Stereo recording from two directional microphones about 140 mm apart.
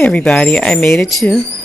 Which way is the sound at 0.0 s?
10° left (ahead or behind).